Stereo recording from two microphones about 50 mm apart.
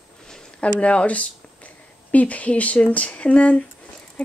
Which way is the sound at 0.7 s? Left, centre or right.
Left.